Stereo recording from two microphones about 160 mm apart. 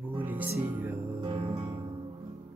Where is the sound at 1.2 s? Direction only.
35° right (ahead or behind).